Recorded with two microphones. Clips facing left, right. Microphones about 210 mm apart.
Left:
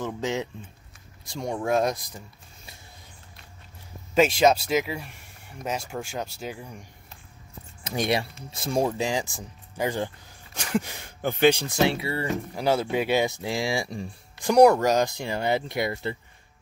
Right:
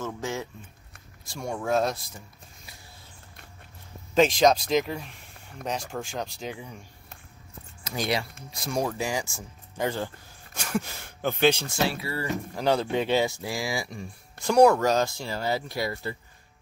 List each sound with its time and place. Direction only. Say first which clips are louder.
0.0 s speech: left 3 dB; 20° left (ahead or behind)
4.1 s speech: even; 10° left (ahead or behind)
7.8 s speech: left 3 dB; 25° left (ahead or behind)
12.5 s speech: even; 10° left (ahead or behind)
13.2 s speech: left 2 dB; 20° left (ahead or behind)
14.4 s speech: left 2 dB; 15° left (ahead or behind)